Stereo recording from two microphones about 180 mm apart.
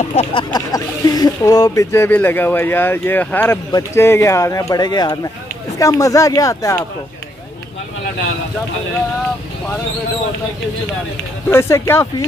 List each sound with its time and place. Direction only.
0.0 s speech: 35° left (ahead or behind); by 6.8 s 20° left (ahead or behind)
11.5 s speech: 15° left (ahead or behind)